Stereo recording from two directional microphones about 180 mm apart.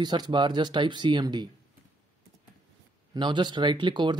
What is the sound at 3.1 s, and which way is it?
Speech, 25° right (ahead or behind).